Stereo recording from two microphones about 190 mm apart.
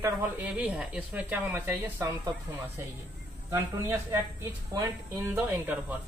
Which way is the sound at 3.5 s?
15° right (ahead or behind).